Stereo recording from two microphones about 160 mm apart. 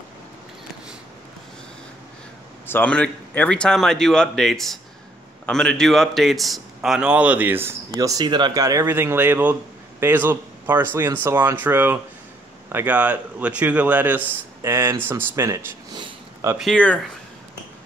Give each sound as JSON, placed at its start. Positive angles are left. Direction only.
{"t": 2.6, "sound": "a man's voice", "side_deg": 10}
{"t": 16.5, "sound": "speech", "side_deg": 5}